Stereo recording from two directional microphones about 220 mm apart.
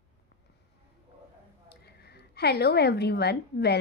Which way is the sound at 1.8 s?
45° left (ahead or behind).